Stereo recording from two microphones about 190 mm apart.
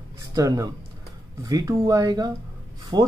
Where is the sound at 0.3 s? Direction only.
15° right (ahead or behind).